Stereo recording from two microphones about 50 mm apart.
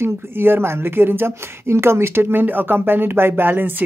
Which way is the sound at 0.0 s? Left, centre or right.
Right.